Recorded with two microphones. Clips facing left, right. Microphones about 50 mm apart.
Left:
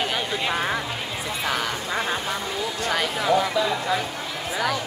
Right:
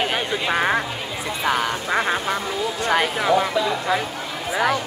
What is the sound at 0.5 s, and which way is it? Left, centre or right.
Duck, right.